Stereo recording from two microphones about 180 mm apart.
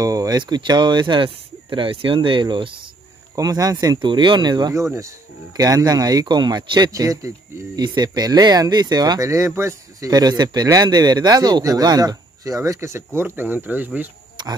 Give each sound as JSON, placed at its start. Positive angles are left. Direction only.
{"t": 0.0, "sound": "speech", "side_deg": -20}
{"t": 14.4, "sound": "oink", "side_deg": -25}